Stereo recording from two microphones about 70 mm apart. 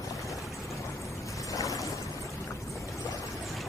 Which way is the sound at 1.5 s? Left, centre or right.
Left.